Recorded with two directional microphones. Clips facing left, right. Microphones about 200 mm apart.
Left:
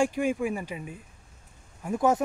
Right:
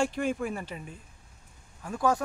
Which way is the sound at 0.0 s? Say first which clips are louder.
Left 3 dB; 10° left (ahead or behind).